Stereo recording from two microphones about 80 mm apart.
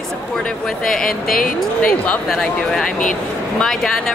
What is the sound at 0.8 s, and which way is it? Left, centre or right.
Speech, centre.